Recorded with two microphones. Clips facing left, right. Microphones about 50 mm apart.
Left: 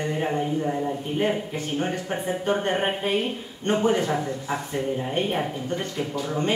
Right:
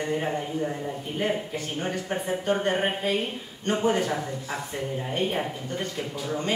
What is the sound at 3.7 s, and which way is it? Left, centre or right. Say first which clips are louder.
Speech: left 2 dB; left.